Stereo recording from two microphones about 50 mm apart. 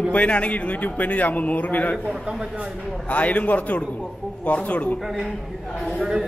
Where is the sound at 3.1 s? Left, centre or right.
Left.